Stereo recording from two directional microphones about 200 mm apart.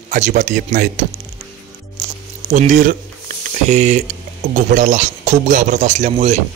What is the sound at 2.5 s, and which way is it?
Speech, 40° right (ahead or behind).